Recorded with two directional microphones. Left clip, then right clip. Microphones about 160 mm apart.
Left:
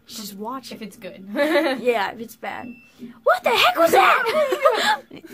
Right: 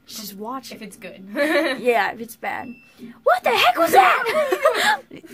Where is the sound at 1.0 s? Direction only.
25° left (ahead or behind).